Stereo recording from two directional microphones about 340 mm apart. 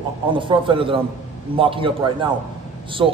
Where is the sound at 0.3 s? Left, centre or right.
Centre.